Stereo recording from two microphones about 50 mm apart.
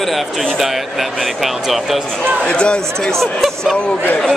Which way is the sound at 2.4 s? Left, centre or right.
Centre.